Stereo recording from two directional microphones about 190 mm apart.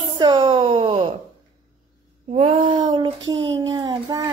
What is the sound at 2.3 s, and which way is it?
A child's voice, 30° right (ahead or behind).